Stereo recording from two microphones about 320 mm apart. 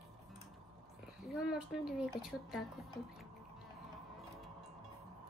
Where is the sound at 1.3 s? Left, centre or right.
Centre.